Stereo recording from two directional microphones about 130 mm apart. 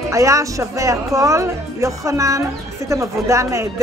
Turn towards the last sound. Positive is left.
turn(degrees=-25)  # may be behind; listen again after turning